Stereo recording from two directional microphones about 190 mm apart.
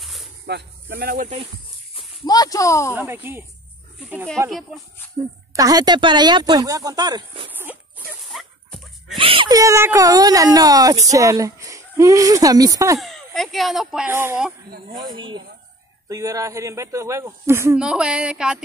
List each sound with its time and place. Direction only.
0.0 s snake: centre (ahead or behind)
0.5 s speech: 60° right (ahead or behind)
2.0 s speech: 20° left (ahead or behind)
2.9 s speech: 10° right (ahead or behind)
5.6 s speech: 20° right (ahead or behind)
8.3 s dog: centre (ahead or behind)
9.2 s speech: 25° right (ahead or behind)
13.0 s speech: centre (ahead or behind)
15.1 s speech: 25° right (ahead or behind); by 18.6 s 5° right (ahead or behind)